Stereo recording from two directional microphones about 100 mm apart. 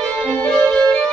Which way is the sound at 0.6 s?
15° left (ahead or behind).